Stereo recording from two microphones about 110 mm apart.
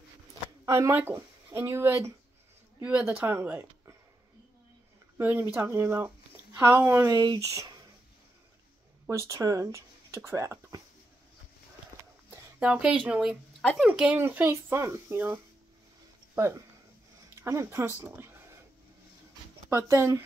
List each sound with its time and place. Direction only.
0.7 s speech: 25° right (ahead or behind)
2.8 s a woman's voice: 10° right (ahead or behind)
5.2 s speech: 15° right (ahead or behind)
7.1 s speech: 35° right (ahead or behind)
9.1 s speech: 30° right (ahead or behind)
12.5 s a woman's voice: 10° right (ahead or behind)
13.6 s speech: 5° left (ahead or behind)
13.8 s speech: 10° right (ahead or behind)
19.7 s speech: 25° right (ahead or behind)